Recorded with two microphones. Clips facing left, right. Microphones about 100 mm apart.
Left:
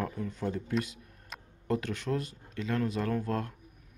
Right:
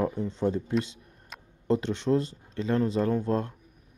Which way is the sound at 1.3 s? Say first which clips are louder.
Even; centre (ahead or behind).